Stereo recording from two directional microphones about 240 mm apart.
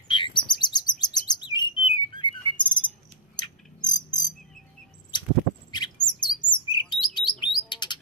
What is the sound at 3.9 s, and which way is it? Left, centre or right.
Bird, centre.